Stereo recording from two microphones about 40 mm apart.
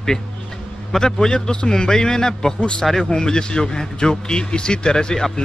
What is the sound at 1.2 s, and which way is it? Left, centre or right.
A man's voice, centre.